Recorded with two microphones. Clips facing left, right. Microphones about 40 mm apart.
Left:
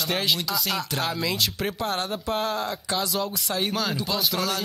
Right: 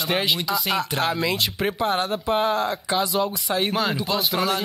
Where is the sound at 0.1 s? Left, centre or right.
Centre.